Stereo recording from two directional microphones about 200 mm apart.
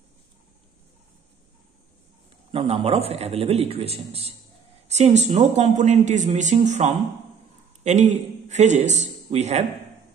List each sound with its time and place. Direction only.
2.5 s a man's voice: 30° right (ahead or behind)